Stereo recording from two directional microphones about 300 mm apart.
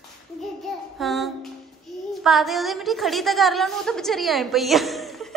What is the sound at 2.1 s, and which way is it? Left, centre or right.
A woman's voice, centre.